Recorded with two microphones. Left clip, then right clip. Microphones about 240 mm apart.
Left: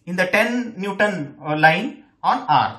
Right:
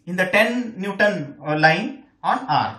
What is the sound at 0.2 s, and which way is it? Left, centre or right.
Speech, centre.